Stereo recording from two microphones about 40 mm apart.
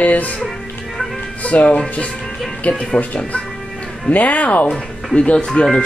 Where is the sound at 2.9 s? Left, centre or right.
Left.